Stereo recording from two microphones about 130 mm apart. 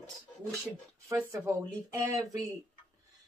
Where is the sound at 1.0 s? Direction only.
25° right (ahead or behind).